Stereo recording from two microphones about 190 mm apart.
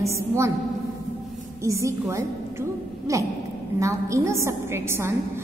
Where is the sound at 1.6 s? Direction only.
15° right (ahead or behind).